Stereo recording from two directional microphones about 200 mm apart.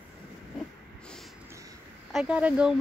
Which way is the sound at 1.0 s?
5° left (ahead or behind).